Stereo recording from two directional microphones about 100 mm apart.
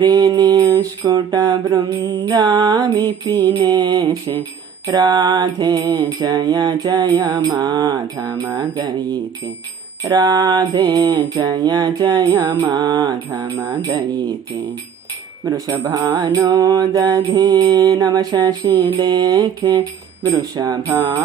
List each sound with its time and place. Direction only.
0.0 s mantra: 45° right (ahead or behind)
1.0 s mantra: 35° right (ahead or behind)
10.0 s mantra: 45° right (ahead or behind)
13.4 s speech: 25° right (ahead or behind)
15.9 s mantra: 35° right (ahead or behind)